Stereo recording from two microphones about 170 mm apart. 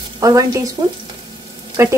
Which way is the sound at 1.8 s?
15° right (ahead or behind).